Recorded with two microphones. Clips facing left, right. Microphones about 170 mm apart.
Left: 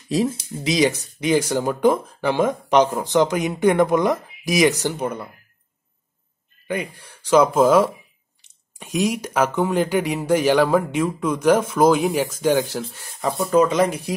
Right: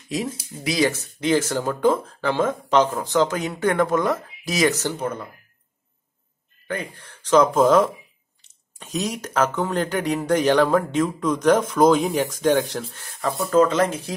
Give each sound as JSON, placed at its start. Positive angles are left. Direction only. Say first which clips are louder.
{"t": 0.7, "sound": "speech", "louder": "left 2 dB", "side_deg": 20}
{"t": 6.7, "sound": "speech", "louder": "left 3 dB", "side_deg": 10}